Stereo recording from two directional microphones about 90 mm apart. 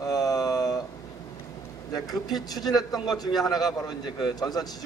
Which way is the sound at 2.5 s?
45° left (ahead or behind).